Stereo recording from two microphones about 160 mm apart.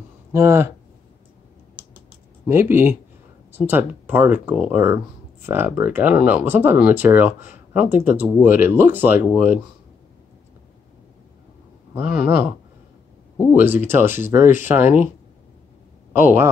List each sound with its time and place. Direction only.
0.3 s speech: 15° right (ahead or behind)
1.8 s typing: 15° right (ahead or behind)
3.5 s speech: 10° right (ahead or behind)
11.9 s speech: 10° right (ahead or behind)
13.5 s speech: 10° right (ahead or behind)
16.2 s speech: 15° right (ahead or behind)